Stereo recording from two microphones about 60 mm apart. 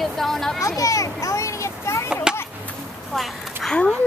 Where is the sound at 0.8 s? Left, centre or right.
Left.